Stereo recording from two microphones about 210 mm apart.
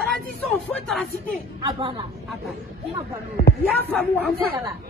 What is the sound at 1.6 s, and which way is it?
Speech, 25° right (ahead or behind).